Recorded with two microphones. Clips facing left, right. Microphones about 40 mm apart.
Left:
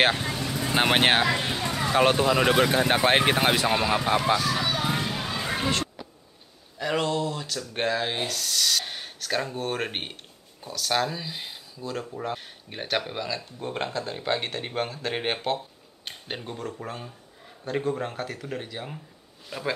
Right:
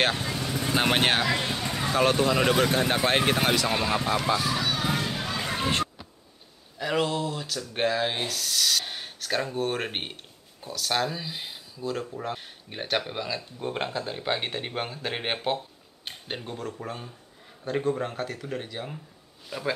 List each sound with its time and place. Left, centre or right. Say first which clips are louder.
0.0 s vehicle: left 3 dB; centre
0.7 s speech: left 2 dB; centre
4.6 s a sound: left 1 dB; centre
5.1 s music: even; centre
6.8 s speech: left 1 dB; centre